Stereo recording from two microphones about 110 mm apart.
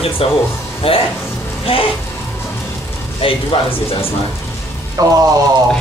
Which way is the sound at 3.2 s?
55° left (ahead or behind).